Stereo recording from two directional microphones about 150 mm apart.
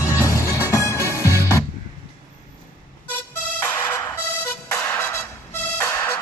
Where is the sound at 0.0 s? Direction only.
20° left (ahead or behind).